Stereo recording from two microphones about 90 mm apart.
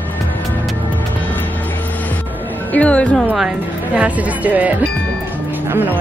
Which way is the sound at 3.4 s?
10° right (ahead or behind).